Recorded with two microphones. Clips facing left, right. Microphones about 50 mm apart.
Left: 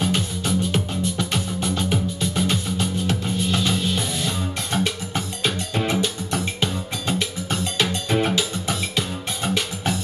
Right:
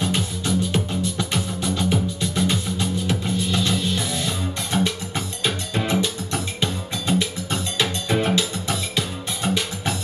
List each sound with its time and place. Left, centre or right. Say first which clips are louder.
0.0 s music: left 1 dB; centre
6.6 s music: even; centre
7.4 s cowbell: left 1 dB; centre
8.1 s music: right 2 dB; centre